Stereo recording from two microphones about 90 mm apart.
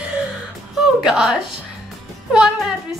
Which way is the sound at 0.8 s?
5° right (ahead or behind).